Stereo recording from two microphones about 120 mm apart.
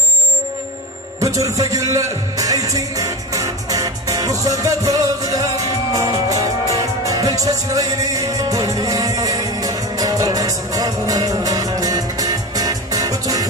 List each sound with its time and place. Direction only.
1.2 s music: 25° right (ahead or behind)